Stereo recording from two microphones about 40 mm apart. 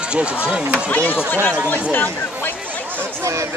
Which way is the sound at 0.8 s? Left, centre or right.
Left.